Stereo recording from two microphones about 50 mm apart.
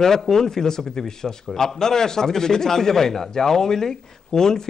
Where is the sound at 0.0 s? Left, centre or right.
Centre.